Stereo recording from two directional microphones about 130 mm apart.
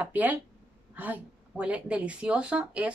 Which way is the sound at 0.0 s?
15° right (ahead or behind).